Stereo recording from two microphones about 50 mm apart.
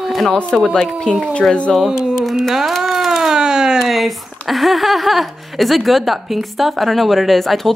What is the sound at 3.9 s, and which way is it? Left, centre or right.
Speech, centre.